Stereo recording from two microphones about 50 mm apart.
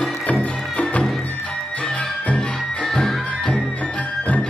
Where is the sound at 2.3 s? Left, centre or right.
Centre.